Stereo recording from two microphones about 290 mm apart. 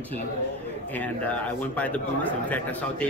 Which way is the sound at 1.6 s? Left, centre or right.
Centre.